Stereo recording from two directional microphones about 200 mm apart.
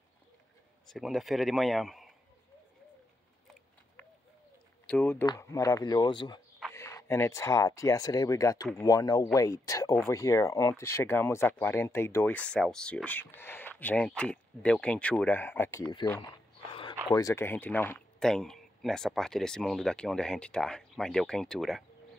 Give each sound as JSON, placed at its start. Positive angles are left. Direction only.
{"t": 0.9, "sound": "speech", "side_deg": 0}
{"t": 4.8, "sound": "speech", "side_deg": 10}
{"t": 5.2, "sound": "speech", "side_deg": 20}
{"t": 16.2, "sound": "a sound", "side_deg": 25}
{"t": 17.1, "sound": "speech", "side_deg": 15}